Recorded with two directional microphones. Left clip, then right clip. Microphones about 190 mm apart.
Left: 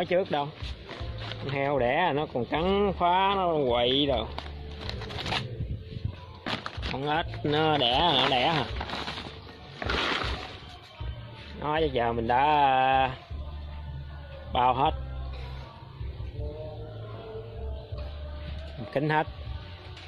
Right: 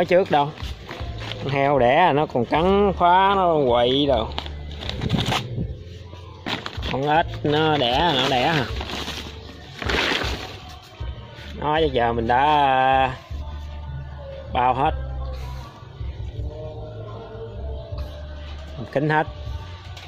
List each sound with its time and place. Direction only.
0.0 s speech: 20° right (ahead or behind)
1.5 s speech: 20° right (ahead or behind)
4.8 s a sound: 20° right (ahead or behind)
6.4 s a sound: 5° left (ahead or behind)
7.0 s speech: 20° right (ahead or behind)
7.2 s speech: 5° right (ahead or behind)
9.8 s music: 15° right (ahead or behind)
11.6 s speech: 10° right (ahead or behind)
14.5 s a man's voice: 10° left (ahead or behind)
18.9 s speech: centre (ahead or behind)